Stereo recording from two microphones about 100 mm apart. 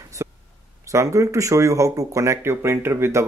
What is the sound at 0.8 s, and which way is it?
Speech, 30° right (ahead or behind).